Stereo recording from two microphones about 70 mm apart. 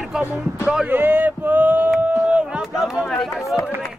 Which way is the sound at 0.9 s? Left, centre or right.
Right.